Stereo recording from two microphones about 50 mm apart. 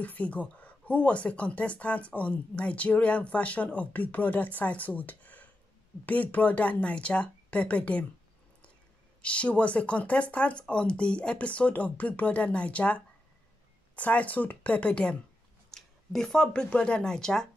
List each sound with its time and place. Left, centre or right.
0.0 s speech: left
9.2 s speech: left
15.7 s speech: centre